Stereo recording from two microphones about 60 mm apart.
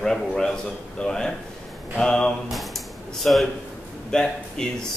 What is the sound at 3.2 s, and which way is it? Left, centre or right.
Speech, centre.